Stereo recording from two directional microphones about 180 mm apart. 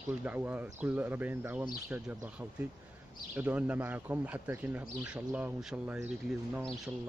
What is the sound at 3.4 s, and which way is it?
Speech, 10° right (ahead or behind).